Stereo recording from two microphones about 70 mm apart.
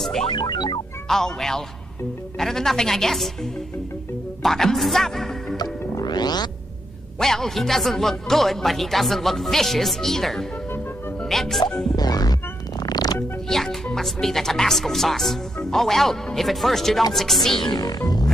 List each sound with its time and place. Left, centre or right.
0.0 s music: centre
0.3 s music: left
1.0 s speech: centre
4.4 s speech: centre
5.6 s music: left
7.2 s speech: centre
12.0 s music: left
13.5 s speech: centre
17.6 s speech: left